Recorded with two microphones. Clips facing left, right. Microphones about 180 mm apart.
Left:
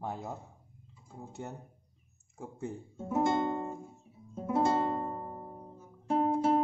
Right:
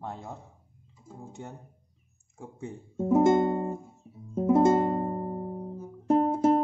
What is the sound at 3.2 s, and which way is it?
Music, 45° right (ahead or behind).